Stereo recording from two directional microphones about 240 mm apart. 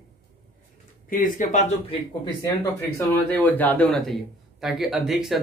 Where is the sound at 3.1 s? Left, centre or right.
Centre.